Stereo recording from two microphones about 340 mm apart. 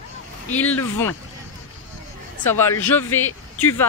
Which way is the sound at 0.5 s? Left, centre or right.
Centre.